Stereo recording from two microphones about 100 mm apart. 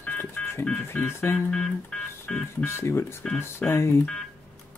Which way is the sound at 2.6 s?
25° left (ahead or behind).